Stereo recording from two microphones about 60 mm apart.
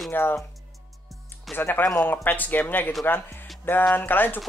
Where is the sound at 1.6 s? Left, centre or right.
Left.